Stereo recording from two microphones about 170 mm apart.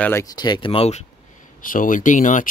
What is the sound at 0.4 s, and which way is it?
Speech, 25° left (ahead or behind).